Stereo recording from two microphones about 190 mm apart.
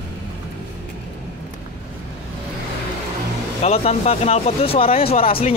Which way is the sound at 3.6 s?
35° left (ahead or behind).